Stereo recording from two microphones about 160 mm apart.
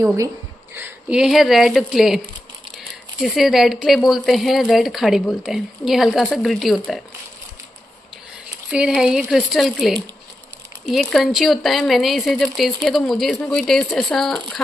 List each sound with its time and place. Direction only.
0.0 s speech: 20° right (ahead or behind); by 7.0 s centre (ahead or behind)
8.7 s speech: 5° right (ahead or behind)